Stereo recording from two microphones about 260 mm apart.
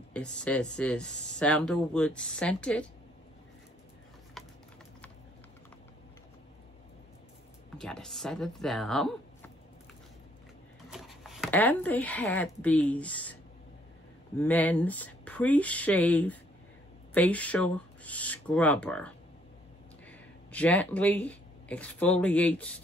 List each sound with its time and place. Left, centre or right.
0.1 s speech: centre
7.7 s speech: centre
10.9 s speech: centre
14.4 s speech: centre